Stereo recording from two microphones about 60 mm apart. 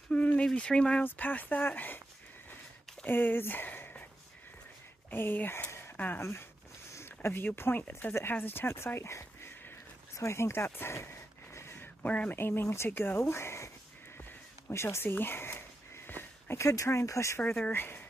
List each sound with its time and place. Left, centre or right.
0.1 s a sound: left
0.6 s speech: centre
1.0 s speech: left
3.1 s speech: left
5.1 s speech: left
5.9 s speech: left
7.2 s speech: left
10.1 s a sound: left
12.1 s speech: left
12.4 s speech: left
14.7 s speech: left
16.1 s a sound: left
16.5 s speech: left
17.7 s speech: left